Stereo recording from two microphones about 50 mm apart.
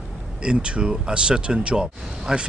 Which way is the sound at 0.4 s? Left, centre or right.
Right.